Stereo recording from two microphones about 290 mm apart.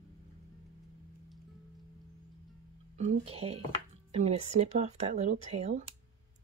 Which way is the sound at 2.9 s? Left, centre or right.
Right.